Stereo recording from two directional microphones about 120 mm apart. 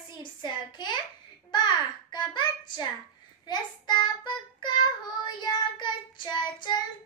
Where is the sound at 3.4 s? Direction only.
40° left (ahead or behind).